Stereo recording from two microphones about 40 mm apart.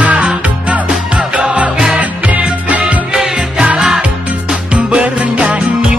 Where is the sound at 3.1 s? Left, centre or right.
Centre.